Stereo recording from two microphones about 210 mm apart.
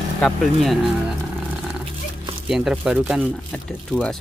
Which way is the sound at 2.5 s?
Centre (ahead or behind).